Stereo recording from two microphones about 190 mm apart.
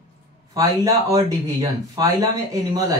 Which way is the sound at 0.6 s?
20° right (ahead or behind).